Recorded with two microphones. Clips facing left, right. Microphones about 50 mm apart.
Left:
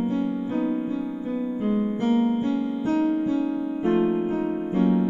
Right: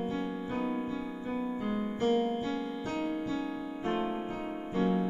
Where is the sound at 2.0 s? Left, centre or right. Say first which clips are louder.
Left 5 dB; left.